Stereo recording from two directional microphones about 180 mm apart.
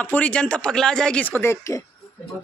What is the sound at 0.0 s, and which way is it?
Speech, 5° left (ahead or behind).